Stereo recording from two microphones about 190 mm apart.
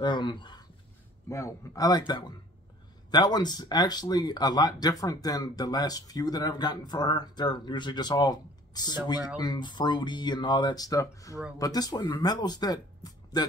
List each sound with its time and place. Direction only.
0.0 s speech: 25° left (ahead or behind)